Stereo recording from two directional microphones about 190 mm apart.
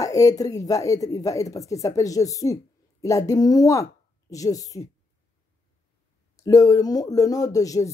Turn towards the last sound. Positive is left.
turn(degrees=20)  # may be behind; listen again after turning